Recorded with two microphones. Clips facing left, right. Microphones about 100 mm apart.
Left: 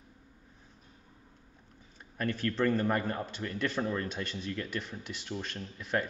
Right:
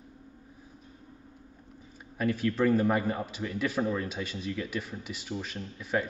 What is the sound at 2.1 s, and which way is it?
A man's voice, 5° right (ahead or behind).